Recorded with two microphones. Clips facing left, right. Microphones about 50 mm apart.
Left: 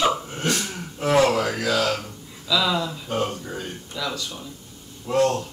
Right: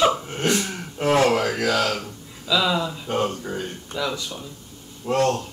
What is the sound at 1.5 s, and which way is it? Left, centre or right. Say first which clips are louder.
Speech: right 1 dB; right.